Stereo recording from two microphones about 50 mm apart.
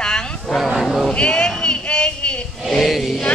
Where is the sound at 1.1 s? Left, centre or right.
Left.